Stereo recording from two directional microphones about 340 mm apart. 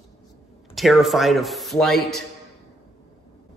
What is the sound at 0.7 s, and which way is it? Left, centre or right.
Speech, centre.